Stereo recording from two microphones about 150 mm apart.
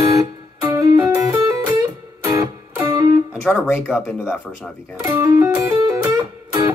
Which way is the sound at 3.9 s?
15° left (ahead or behind).